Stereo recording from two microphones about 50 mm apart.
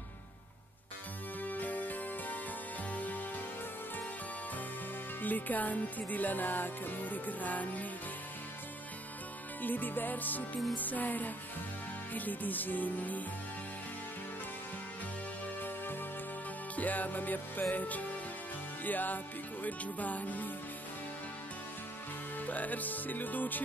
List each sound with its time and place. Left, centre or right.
1.4 s music: left
5.2 s music: left
9.6 s music: left
16.7 s music: left
22.5 s music: left